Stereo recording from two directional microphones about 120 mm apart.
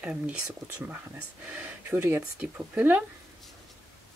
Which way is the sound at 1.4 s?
15° right (ahead or behind).